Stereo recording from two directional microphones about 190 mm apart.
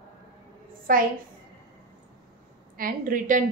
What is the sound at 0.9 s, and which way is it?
Speech, 45° right (ahead or behind).